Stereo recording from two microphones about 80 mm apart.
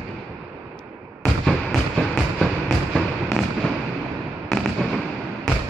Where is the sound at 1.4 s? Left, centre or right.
Centre.